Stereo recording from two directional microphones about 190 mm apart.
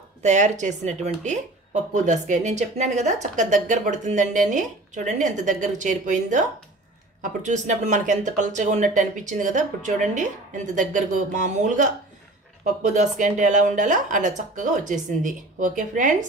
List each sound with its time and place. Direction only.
0.2 s speech: 40° right (ahead or behind)
7.4 s speech: 40° right (ahead or behind)